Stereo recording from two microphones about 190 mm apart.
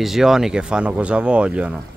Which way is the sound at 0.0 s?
Centre (ahead or behind).